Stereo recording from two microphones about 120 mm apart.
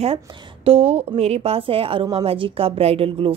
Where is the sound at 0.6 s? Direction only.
55° right (ahead or behind).